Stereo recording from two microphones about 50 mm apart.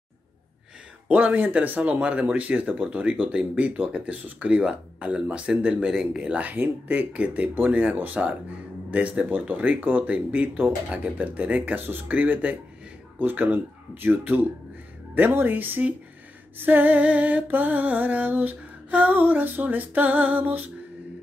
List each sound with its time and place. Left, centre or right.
1.0 s music: right
1.8 s speech: right
5.9 s speech: centre
7.5 s music: right
11.1 s speech: right
12.1 s music: right
13.2 s speech: right
15.3 s music: right